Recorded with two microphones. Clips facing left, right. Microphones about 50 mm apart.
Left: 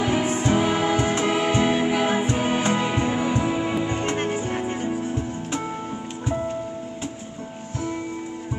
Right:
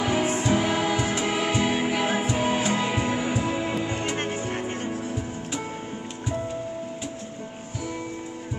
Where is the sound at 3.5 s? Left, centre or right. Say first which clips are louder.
Left 3 dB; centre.